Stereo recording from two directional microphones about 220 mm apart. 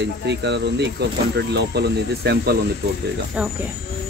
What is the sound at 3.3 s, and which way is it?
Speech, 5° right (ahead or behind).